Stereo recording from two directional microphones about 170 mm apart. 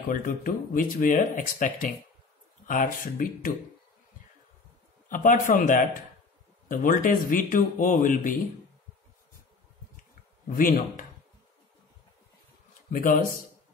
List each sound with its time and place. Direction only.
0.1 s speech: 55° left (ahead or behind)
5.1 s speech: 50° left (ahead or behind)
10.5 s speech: 55° left (ahead or behind)
12.9 s speech: 55° left (ahead or behind)